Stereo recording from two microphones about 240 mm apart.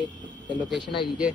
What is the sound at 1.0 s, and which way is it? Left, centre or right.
Speech, centre.